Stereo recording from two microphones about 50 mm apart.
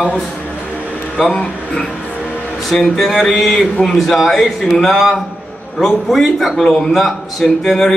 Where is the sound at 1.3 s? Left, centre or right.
Centre.